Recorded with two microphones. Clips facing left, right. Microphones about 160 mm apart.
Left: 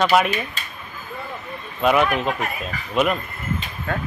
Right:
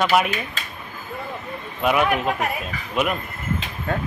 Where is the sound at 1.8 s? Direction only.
10° right (ahead or behind).